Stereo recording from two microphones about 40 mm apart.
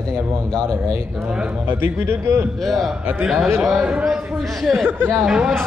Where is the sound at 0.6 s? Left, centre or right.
Right.